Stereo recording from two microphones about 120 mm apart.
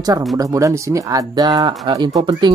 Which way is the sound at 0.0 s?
30° right (ahead or behind).